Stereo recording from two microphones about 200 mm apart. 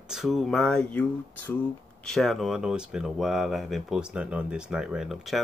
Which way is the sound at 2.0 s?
Centre (ahead or behind).